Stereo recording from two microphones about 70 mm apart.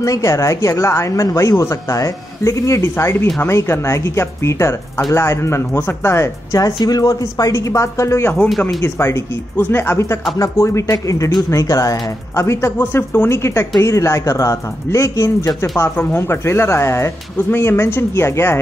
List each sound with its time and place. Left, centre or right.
0.0 s a woman's voice: left
6.6 s speech: left
8.5 s speech: centre
8.8 s a woman's voice: left
12.7 s a woman's voice: left
16.2 s speech: left